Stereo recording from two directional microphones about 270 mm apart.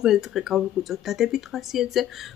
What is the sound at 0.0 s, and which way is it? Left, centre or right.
Speech, centre.